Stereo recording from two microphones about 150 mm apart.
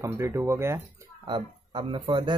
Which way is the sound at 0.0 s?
20° right (ahead or behind).